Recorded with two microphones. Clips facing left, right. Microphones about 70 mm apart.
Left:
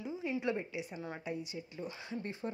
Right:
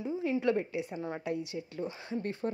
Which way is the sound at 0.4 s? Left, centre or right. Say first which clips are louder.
Right 7 dB; right.